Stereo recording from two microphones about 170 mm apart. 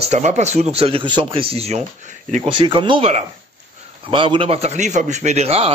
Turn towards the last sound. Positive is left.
turn(degrees=-35)  # may be behind; listen again after turning